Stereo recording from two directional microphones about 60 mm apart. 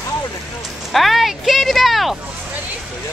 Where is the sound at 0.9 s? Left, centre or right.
Centre.